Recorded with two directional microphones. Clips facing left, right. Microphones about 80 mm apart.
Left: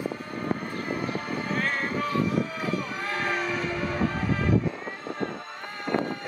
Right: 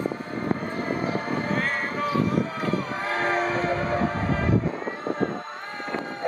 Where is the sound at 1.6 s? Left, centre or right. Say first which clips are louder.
Right 1 dB; centre.